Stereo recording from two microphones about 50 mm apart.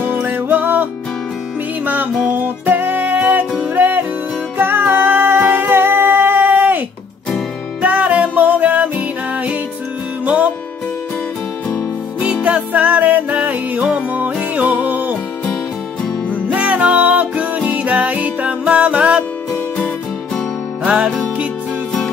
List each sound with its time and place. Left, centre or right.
0.0 s music: right
2.3 s music: right
7.8 s music: right
12.2 s music: right
16.4 s music: right
20.8 s music: right